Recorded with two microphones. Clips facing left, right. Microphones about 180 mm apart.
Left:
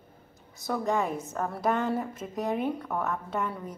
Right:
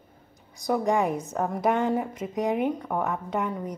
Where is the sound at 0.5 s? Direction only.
15° right (ahead or behind).